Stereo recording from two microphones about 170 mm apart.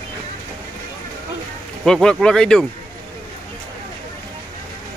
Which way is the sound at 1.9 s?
5° left (ahead or behind).